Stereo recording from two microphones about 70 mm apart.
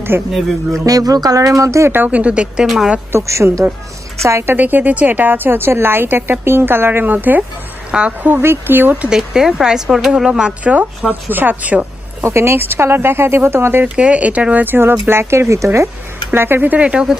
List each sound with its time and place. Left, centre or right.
0.1 s speech: right
0.8 s speech: right
1.9 s speech: right
3.1 s a woman's voice: right
4.6 s a woman's voice: right
7.9 s a woman's voice: centre
8.3 s a woman's voice: right
12.2 s speech: right
13.9 s speech: centre; by 15.9 s right
16.3 s speech: right
16.7 s speech: centre